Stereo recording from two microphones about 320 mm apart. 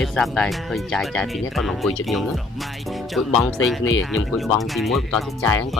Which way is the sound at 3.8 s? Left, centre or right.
Left.